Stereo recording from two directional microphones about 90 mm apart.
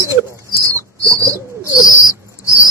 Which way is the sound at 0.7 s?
40° right (ahead or behind).